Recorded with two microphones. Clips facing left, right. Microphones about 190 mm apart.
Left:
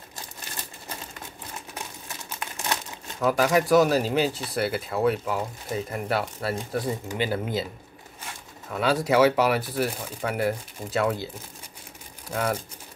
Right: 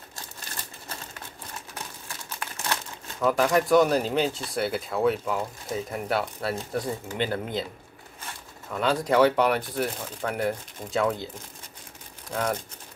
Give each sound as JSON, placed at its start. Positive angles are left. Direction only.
{"t": 2.0, "sound": "crumpling", "side_deg": 15}
{"t": 3.2, "sound": "speech", "side_deg": 5}
{"t": 8.6, "sound": "speech", "side_deg": 5}
{"t": 12.3, "sound": "speech", "side_deg": 5}